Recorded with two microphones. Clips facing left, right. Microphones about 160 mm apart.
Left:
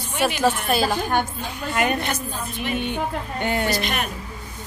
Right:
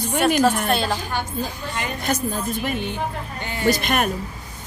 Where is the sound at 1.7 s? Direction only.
65° left (ahead or behind).